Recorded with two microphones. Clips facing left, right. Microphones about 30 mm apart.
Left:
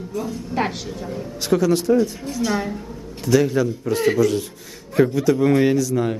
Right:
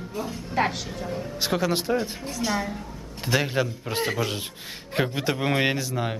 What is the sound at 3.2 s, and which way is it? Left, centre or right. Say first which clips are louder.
Speech: left 7 dB; right.